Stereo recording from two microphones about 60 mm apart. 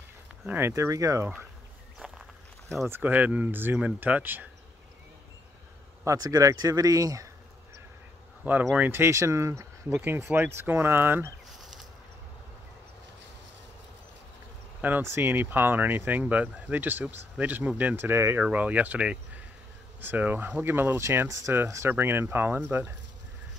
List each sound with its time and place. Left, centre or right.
0.7 s speech: right
3.0 s speech: right
6.0 s speech: right
8.7 s speech: right
10.3 s speech: right
14.8 s speech: right
15.0 s speech: right
17.9 s speech: right
18.4 s speech: right
20.0 s speech: right
21.3 s speech: right
21.8 s speech: right